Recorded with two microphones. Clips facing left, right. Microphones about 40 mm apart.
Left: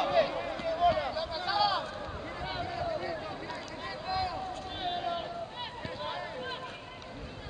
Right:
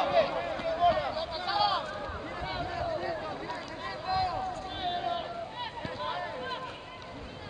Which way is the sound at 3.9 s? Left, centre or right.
Right.